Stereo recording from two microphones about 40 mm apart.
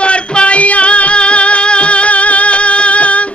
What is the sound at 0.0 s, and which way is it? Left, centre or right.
Music, left.